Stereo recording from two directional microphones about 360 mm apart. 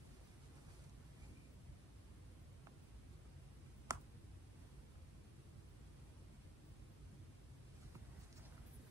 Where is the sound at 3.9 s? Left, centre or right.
Centre.